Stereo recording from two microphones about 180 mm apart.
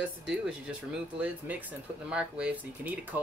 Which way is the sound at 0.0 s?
5° right (ahead or behind).